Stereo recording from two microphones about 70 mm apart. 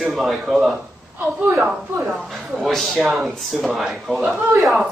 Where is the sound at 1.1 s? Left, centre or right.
Right.